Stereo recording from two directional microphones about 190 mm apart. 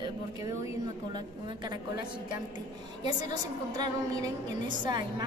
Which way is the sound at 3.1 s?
20° right (ahead or behind).